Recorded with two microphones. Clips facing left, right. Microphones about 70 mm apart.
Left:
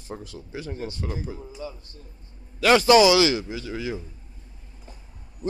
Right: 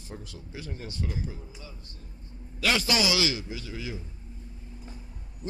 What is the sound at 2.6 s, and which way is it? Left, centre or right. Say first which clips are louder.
Speech: left 11 dB; left.